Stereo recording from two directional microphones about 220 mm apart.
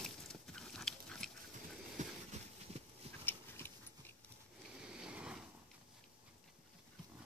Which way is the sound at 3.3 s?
10° left (ahead or behind).